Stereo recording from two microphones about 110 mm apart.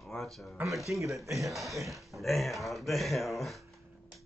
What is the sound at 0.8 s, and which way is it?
Speech, 30° right (ahead or behind).